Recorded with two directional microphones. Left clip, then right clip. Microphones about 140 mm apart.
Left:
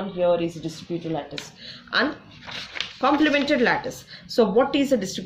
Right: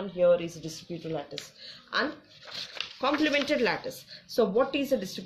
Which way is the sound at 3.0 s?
25° right (ahead or behind).